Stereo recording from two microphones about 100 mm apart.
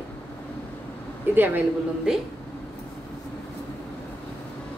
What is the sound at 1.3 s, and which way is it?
Speech, 20° right (ahead or behind).